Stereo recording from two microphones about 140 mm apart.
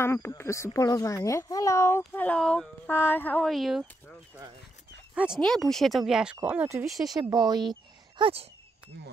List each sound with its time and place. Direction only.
0.0 s speech: 20° left (ahead or behind)
3.4 s speech: centre (ahead or behind)
5.1 s speech: 5° right (ahead or behind)
5.4 s speech: 5° left (ahead or behind); by 6.9 s 15° right (ahead or behind)
6.9 s speech: centre (ahead or behind)
7.2 s speech: 30° right (ahead or behind)